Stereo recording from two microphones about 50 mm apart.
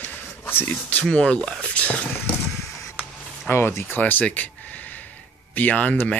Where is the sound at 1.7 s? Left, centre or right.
Left.